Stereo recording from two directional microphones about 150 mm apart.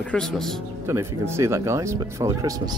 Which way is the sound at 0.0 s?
5° left (ahead or behind).